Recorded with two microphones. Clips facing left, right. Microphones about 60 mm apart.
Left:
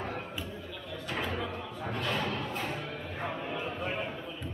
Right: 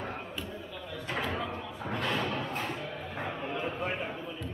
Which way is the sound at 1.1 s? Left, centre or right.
Centre.